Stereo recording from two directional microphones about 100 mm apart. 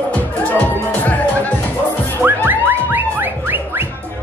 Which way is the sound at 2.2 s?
20° right (ahead or behind).